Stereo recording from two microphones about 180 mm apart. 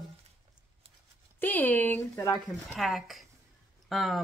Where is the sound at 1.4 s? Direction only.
10° left (ahead or behind).